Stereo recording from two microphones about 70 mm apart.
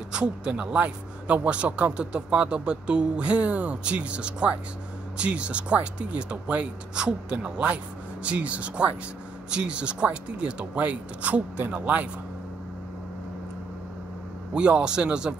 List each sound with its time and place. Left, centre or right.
0.1 s a man's voice: centre
14.5 s a man's voice: centre